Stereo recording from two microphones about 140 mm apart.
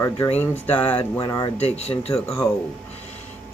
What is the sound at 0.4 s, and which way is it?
Speech, 15° left (ahead or behind).